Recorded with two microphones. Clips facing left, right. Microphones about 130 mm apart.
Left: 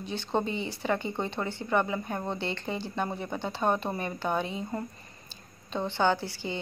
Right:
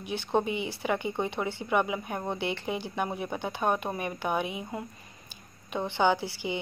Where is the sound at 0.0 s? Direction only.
10° right (ahead or behind).